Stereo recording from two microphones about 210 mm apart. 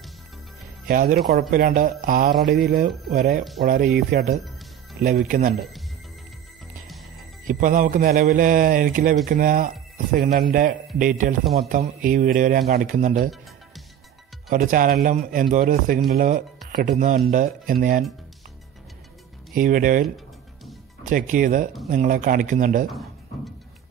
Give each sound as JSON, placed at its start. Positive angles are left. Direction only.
{"t": 0.8, "sound": "a man's voice", "side_deg": -45}
{"t": 7.4, "sound": "a man's voice", "side_deg": -40}
{"t": 14.5, "sound": "a man's voice", "side_deg": -40}
{"t": 19.5, "sound": "a man's voice", "side_deg": -40}